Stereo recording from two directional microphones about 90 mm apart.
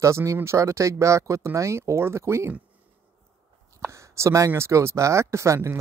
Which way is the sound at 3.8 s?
35° right (ahead or behind).